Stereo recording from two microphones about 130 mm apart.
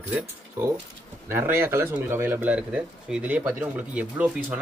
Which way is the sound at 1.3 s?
20° right (ahead or behind).